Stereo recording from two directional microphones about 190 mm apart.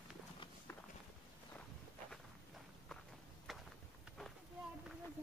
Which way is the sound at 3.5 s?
Centre (ahead or behind).